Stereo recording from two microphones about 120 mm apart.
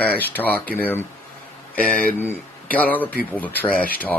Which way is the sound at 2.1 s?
15° left (ahead or behind).